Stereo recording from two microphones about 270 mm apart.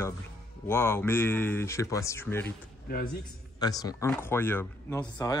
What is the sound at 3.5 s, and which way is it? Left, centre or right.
Speech, centre.